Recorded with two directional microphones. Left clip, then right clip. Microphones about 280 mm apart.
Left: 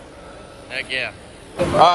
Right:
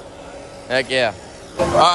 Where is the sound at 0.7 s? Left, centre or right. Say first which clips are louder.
Right 7 dB; centre.